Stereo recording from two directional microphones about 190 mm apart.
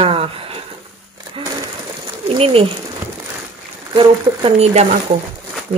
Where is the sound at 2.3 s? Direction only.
30° right (ahead or behind).